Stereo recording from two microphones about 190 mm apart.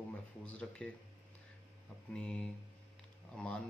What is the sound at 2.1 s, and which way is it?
Speech, 5° left (ahead or behind).